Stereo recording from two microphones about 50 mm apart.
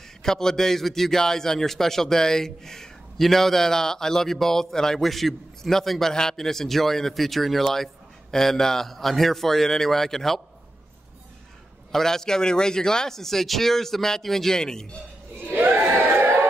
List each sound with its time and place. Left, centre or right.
0.2 s a man's voice: centre
11.9 s a man's voice: centre
15.5 s crowd: right
16.0 s a sound: right